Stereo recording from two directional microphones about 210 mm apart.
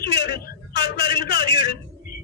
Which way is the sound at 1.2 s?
20° right (ahead or behind).